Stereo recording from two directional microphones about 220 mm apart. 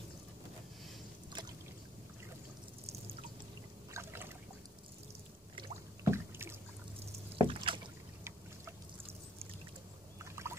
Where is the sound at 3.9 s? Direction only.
10° right (ahead or behind).